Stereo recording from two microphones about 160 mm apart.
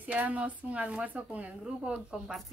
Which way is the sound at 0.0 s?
10° right (ahead or behind).